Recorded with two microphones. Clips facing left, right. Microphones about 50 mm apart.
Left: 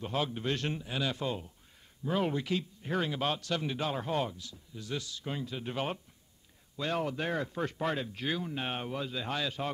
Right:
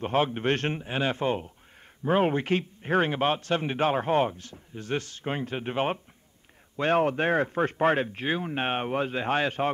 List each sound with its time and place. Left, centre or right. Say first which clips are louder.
0.0 s a man's voice: right 8 dB; right